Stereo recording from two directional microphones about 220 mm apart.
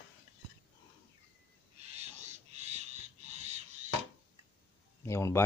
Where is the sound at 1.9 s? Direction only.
30° right (ahead or behind).